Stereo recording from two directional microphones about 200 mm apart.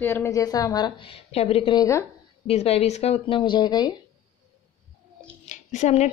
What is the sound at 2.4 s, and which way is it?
Speech, 30° left (ahead or behind).